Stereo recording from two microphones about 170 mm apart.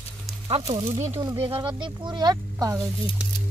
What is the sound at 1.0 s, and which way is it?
Speech, 15° right (ahead or behind).